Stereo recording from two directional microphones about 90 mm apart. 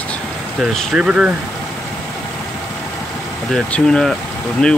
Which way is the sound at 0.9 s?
10° right (ahead or behind).